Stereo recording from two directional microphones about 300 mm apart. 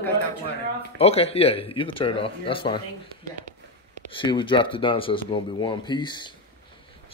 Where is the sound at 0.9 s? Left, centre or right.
Centre.